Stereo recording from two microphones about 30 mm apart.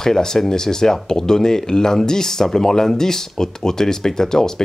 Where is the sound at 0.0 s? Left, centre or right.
Centre.